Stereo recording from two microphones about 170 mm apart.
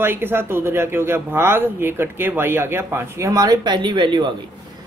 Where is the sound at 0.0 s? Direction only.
10° right (ahead or behind).